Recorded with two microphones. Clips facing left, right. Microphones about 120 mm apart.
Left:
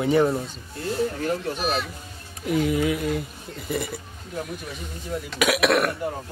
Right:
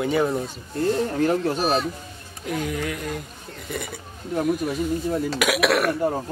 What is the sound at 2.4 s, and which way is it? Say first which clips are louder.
Speech: left 5 dB; 5° left (ahead or behind).